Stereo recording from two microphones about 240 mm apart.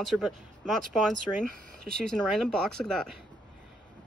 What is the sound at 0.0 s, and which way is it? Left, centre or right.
Speech, centre.